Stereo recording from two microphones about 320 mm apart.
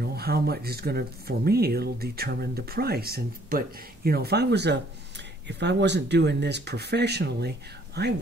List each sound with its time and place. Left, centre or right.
0.0 s speech: right